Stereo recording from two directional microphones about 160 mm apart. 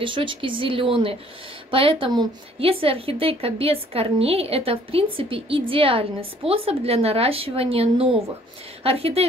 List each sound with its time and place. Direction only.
0.0 s a woman's voice: 30° right (ahead or behind)